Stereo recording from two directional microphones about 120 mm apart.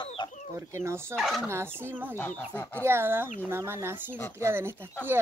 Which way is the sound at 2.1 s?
15° left (ahead or behind).